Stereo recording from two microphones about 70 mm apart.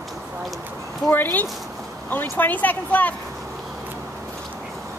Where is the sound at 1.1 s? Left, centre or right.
Left.